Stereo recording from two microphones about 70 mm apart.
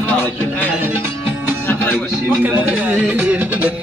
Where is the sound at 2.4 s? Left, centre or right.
Right.